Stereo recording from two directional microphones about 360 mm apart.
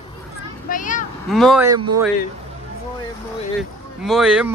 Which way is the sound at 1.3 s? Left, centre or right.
Centre.